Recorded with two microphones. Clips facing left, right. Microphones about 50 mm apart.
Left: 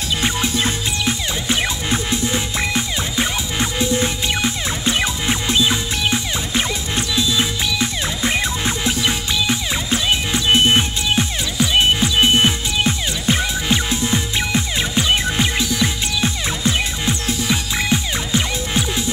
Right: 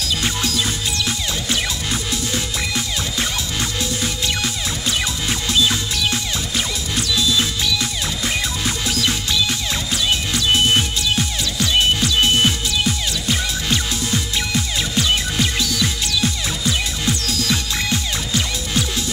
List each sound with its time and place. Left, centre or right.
0.2 s music: left